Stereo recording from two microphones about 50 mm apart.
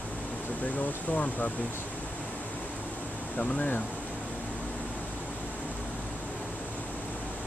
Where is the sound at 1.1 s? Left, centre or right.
Left.